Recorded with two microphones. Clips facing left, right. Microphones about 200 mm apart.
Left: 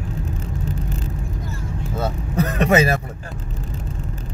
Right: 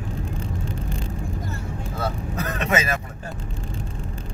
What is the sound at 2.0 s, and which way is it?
Speech, 30° left (ahead or behind).